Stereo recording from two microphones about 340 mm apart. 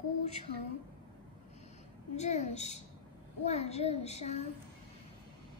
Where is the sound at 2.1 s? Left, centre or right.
Centre.